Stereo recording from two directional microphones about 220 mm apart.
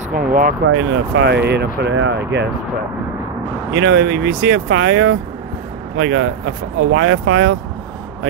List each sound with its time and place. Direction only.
0.1 s speech: 40° right (ahead or behind)
0.7 s speech: 55° right (ahead or behind)
3.7 s speech: 55° right (ahead or behind)